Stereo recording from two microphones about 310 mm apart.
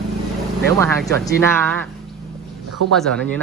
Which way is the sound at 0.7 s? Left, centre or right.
Centre.